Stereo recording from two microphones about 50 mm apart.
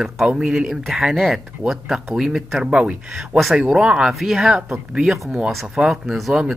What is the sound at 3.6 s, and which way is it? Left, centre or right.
Speech, centre.